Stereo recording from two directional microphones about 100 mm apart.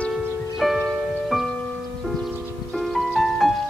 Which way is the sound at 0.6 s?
Centre (ahead or behind).